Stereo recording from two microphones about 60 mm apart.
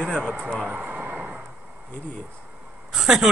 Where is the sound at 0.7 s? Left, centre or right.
Right.